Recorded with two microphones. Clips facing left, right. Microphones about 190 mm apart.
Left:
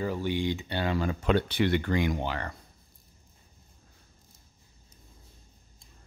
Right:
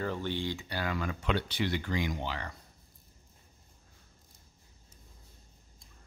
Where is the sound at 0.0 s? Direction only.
10° left (ahead or behind); by 1.3 s 30° left (ahead or behind).